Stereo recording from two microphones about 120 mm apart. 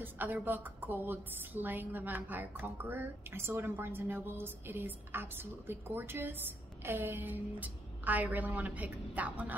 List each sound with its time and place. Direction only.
0.0 s a woman's voice: 15° right (ahead or behind)